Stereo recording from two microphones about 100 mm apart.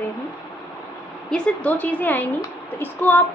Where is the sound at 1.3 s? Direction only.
10° left (ahead or behind).